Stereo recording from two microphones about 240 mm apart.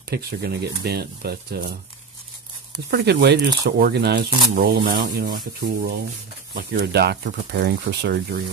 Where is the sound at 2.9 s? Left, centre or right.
Right.